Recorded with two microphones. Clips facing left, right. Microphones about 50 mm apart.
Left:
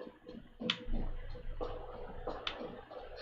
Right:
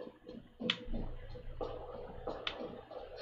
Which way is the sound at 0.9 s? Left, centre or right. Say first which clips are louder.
Even; centre.